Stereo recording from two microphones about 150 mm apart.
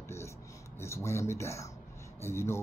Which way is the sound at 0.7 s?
15° left (ahead or behind).